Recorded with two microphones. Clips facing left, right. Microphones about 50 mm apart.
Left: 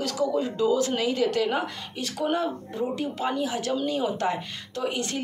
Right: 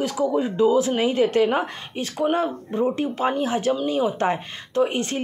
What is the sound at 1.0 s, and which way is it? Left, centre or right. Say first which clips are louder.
Speech: right 5 dB; right.